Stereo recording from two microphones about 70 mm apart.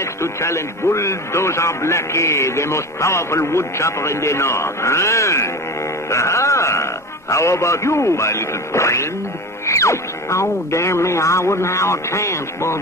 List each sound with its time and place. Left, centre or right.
0.0 s a man's voice: left